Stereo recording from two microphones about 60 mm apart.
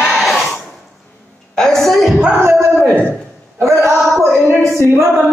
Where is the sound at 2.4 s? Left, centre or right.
Right.